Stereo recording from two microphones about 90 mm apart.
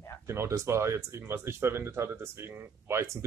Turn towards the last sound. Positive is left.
turn(degrees=-30)  # may be behind; listen again after turning